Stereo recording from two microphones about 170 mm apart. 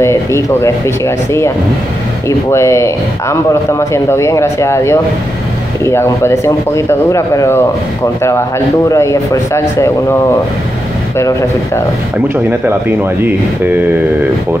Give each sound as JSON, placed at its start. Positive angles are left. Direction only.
{"t": 0.0, "sound": "speech", "side_deg": 15}
{"t": 11.1, "sound": "speech", "side_deg": 15}
{"t": 12.4, "sound": "speech", "side_deg": -10}